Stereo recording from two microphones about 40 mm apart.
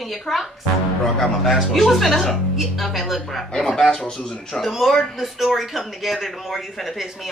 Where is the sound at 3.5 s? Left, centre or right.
Centre.